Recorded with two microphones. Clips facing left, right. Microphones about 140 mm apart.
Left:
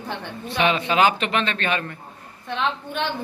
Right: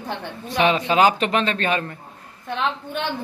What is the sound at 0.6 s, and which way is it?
A man's voice, 35° right (ahead or behind).